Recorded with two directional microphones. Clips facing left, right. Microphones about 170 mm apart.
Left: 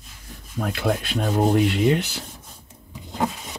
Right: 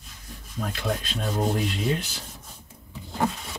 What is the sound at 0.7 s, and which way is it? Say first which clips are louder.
Speech: left 6 dB; 70° left (ahead or behind).